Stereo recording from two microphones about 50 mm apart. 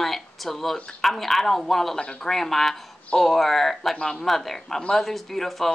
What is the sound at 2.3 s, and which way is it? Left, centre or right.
Speech, centre.